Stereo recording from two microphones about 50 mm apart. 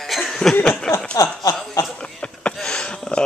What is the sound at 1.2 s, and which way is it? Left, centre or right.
Chuckle, left.